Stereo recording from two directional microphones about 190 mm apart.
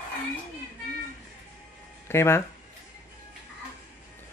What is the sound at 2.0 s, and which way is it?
Speech, 15° left (ahead or behind).